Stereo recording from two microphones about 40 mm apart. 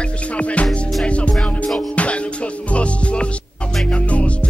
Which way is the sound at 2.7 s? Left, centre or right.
Left.